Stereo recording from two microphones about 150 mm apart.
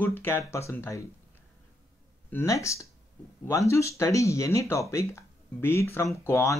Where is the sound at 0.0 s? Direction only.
15° left (ahead or behind).